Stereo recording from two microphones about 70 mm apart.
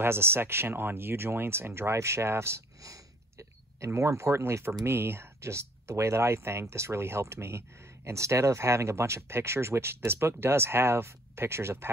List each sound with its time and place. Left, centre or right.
0.0 s speech: right